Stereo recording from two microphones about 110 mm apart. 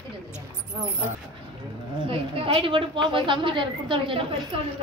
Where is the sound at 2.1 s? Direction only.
55° right (ahead or behind).